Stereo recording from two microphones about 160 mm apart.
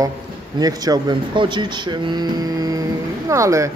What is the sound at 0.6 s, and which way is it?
Speech, 25° right (ahead or behind).